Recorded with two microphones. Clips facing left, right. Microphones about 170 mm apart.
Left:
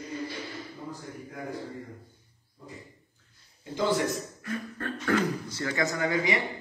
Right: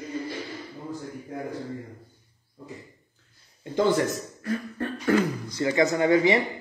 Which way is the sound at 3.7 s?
50° right (ahead or behind).